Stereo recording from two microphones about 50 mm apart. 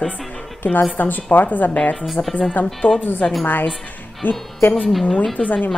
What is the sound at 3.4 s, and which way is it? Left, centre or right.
Speech, left.